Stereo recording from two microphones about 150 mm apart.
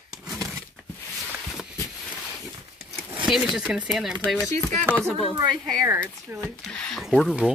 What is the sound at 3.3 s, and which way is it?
Speech, 5° right (ahead or behind).